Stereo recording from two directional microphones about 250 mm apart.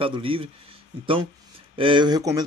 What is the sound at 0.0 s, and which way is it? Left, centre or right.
Speech, right.